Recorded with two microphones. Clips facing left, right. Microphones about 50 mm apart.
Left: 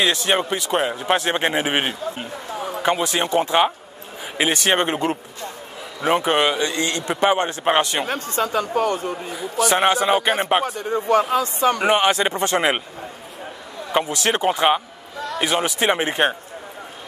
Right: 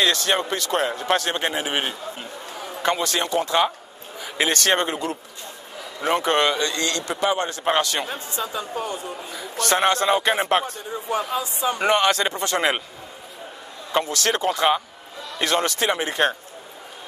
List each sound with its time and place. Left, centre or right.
0.0 s a man's voice: centre
2.8 s a man's voice: centre
4.8 s speech: left
6.0 s a man's voice: centre
8.1 s speech: left
9.1 s a man's voice: left
10.8 s speech: left
11.8 s a man's voice: centre
13.9 s a man's voice: centre
15.8 s a man's voice: left